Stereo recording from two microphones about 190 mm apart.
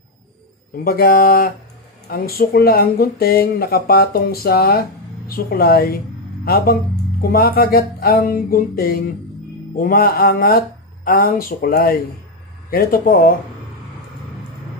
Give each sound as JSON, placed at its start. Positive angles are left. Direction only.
{"t": 0.8, "sound": "speech", "side_deg": 50}